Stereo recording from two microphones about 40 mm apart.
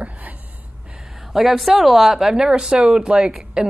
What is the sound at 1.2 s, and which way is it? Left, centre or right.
A woman's voice, centre.